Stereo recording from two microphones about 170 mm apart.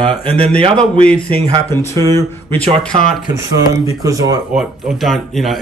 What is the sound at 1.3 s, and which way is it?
Speech, 30° right (ahead or behind).